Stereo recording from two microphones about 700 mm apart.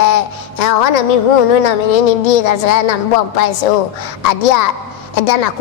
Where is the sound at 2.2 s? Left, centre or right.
Left.